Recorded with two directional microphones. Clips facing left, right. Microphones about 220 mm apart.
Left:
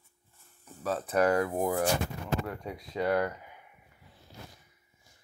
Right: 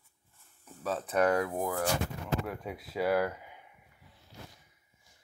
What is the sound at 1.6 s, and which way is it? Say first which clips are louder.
Speech: left 4 dB; 20° left (ahead or behind).